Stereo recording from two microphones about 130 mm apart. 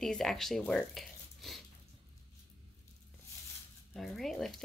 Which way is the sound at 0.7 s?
Centre (ahead or behind).